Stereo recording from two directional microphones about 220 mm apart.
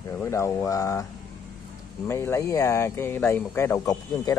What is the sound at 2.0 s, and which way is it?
Speech, 10° left (ahead or behind).